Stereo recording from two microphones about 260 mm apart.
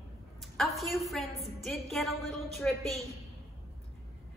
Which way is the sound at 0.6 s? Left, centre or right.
Centre.